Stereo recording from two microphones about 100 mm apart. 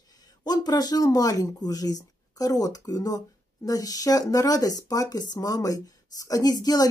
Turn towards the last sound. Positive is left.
turn(degrees=40)  # may be behind; listen again after turning